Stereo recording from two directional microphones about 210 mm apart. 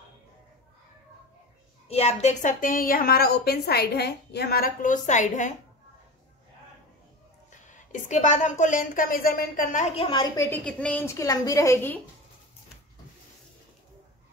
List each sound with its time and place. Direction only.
1.9 s a woman's voice: 30° left (ahead or behind)
7.6 s a woman's voice: 35° left (ahead or behind)
9.9 s a woman's voice: 25° left (ahead or behind)